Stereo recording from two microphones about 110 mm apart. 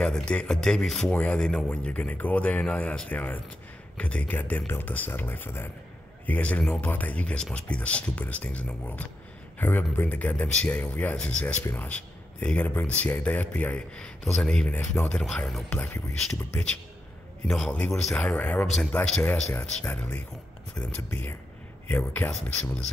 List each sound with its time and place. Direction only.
0.0 s speech: 5° left (ahead or behind)
14.7 s speech: 20° left (ahead or behind)
15.0 s speech: 10° left (ahead or behind)
15.7 s speech: 15° left (ahead or behind)
17.5 s speech: 10° left (ahead or behind)